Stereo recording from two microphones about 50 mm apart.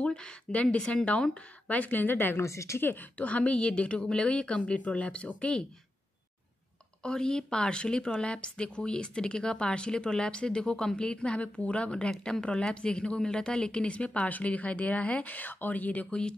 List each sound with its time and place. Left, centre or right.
0.0 s speech: centre
1.7 s speech: left
2.3 s a woman's voice: left
2.8 s a woman's voice: left
7.0 s a woman's voice: centre; by 16.1 s left
16.1 s a woman's voice: centre